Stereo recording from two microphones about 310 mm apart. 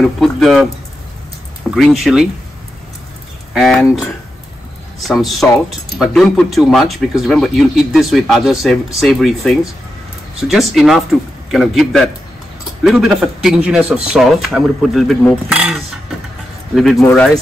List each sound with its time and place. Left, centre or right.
0.0 s speech: centre
1.8 s speech: centre
3.5 s speech: centre
5.0 s speech: centre